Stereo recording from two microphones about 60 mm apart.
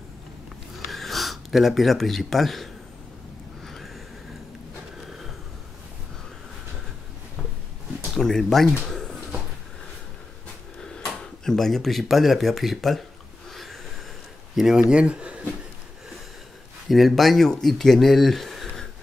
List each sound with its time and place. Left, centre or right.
0.7 s a sound: centre
8.2 s speech: centre
8.8 s a sound: centre
11.1 s speech: centre
13.5 s snort: centre
14.5 s speech: centre
16.9 s speech: centre